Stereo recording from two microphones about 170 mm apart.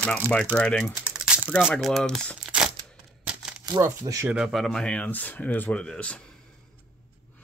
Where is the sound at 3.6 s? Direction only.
25° right (ahead or behind).